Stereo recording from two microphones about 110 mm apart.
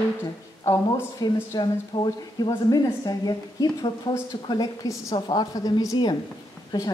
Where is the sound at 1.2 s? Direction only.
40° left (ahead or behind).